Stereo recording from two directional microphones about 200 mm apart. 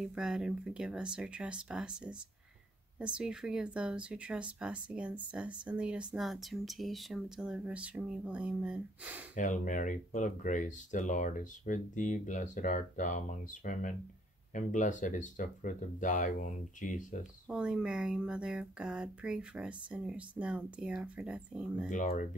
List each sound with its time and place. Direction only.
0.0 s speech: 5° right (ahead or behind)
3.2 s speech: 5° right (ahead or behind)
9.3 s speech: 40° left (ahead or behind)
17.5 s speech: 5° right (ahead or behind)
21.8 s speech: 40° left (ahead or behind)